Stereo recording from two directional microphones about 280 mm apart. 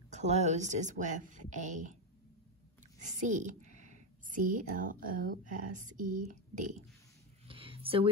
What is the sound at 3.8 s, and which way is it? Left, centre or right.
Speech, right.